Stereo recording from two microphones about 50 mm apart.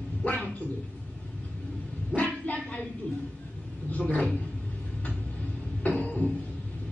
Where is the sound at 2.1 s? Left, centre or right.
Left.